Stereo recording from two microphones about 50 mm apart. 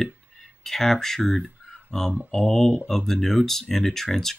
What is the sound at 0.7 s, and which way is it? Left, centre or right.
Speech, centre.